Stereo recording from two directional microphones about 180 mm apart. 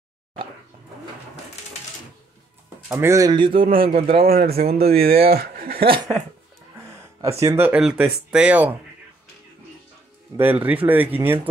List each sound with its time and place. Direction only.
2.9 s speech: 15° right (ahead or behind)
4.3 s speech: 55° right (ahead or behind)
6.8 s a sound: 15° right (ahead or behind)
7.3 s speech: 15° right (ahead or behind)
10.3 s speech: 10° right (ahead or behind)